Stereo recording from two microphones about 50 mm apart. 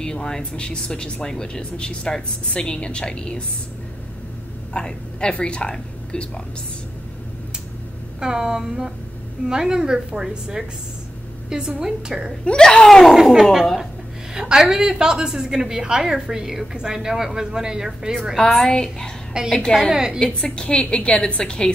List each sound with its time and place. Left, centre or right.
0.0 s a woman's voice: centre
4.7 s a man's voice: centre
8.2 s speech: centre
12.4 s speech: centre
12.8 s speech: centre
13.2 s speech: centre
18.6 s speech: centre
19.4 s speech: centre
20.2 s a woman's voice: centre